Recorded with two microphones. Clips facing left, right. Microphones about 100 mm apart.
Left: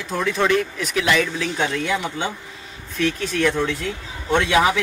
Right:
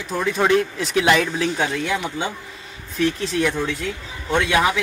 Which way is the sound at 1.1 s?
45° right (ahead or behind).